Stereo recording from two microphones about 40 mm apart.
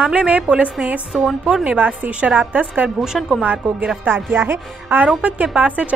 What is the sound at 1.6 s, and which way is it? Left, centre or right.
Speech, right.